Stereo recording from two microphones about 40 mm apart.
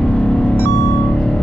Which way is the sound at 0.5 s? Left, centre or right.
Left.